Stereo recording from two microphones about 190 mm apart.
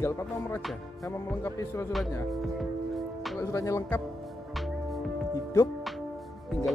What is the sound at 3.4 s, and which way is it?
Speech, 15° left (ahead or behind).